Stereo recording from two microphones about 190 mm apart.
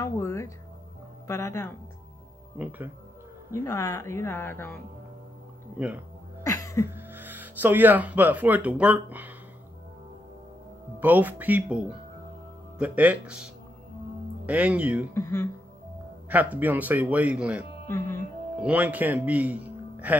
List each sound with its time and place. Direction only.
0.0 s music: 15° left (ahead or behind)
1.2 s speech: 15° left (ahead or behind)
2.5 s speech: 10° right (ahead or behind)
3.5 s speech: 15° left (ahead or behind)
6.4 s cough: 15° left (ahead or behind)
6.9 s speech: 10° right (ahead or behind)
11.0 s speech: 10° right (ahead or behind)
15.1 s speech: 15° left (ahead or behind)
16.3 s speech: 10° right (ahead or behind)
17.8 s speech: 15° left (ahead or behind)
18.6 s a man's voice: 10° right (ahead or behind)